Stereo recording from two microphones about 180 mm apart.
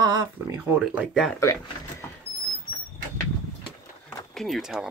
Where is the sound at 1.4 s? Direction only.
15° left (ahead or behind).